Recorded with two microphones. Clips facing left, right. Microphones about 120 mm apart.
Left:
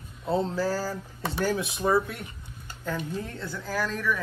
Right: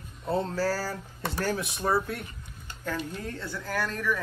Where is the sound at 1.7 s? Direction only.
Centre (ahead or behind).